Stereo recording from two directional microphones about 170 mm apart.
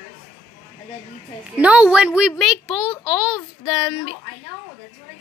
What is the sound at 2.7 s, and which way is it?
Speech, 25° left (ahead or behind).